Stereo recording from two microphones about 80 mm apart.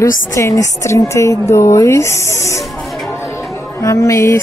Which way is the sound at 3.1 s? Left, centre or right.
Left.